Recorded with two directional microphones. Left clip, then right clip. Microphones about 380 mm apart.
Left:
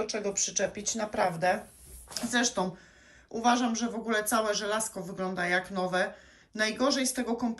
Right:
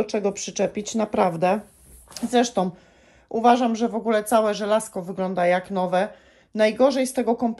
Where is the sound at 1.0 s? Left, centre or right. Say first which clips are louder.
Right 10 dB; right.